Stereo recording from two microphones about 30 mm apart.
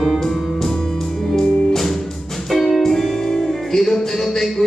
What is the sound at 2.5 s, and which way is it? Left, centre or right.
Music, centre.